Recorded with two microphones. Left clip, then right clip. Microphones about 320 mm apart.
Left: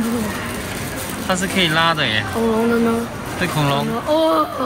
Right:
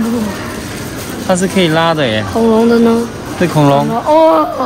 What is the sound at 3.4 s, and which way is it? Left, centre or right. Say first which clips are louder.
Speech: right 9 dB; centre.